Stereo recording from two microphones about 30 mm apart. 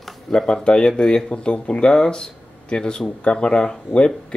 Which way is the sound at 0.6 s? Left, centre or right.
Left.